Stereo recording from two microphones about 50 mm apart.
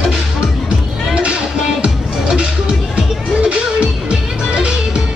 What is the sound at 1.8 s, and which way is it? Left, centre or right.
Music, centre.